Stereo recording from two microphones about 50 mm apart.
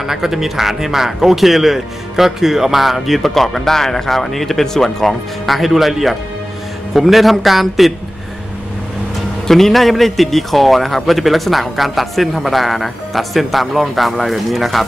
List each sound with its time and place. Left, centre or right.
0.0 s a man's voice: centre
9.5 s a man's voice: centre